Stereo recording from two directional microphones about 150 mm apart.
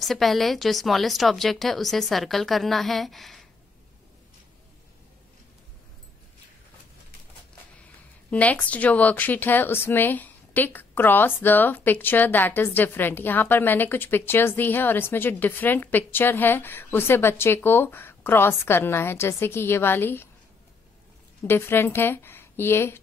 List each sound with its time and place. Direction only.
0.0 s speech: centre (ahead or behind)
8.3 s a woman's voice: 10° left (ahead or behind)
21.5 s a woman's voice: 15° left (ahead or behind)